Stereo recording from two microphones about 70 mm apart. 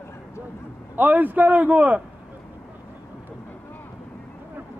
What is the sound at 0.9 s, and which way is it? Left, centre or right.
A man's voice, right.